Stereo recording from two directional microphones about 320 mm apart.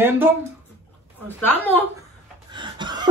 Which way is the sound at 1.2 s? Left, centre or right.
Centre.